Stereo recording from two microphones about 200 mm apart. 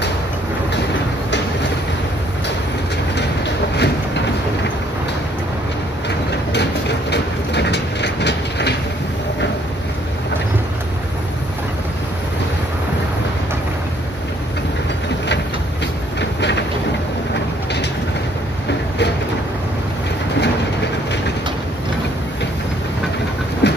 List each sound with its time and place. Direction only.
3.2 s train: 60° left (ahead or behind)
6.0 s train: 60° left (ahead or behind)
16.2 s train: 60° left (ahead or behind)
23.6 s train: 60° left (ahead or behind)